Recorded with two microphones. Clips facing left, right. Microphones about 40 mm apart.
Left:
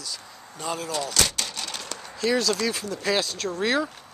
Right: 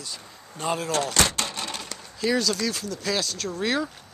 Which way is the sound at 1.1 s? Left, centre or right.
Right.